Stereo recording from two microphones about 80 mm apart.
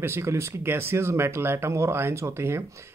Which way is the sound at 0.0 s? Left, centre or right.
Right.